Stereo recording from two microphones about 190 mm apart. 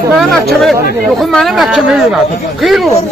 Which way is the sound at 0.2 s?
Centre (ahead or behind).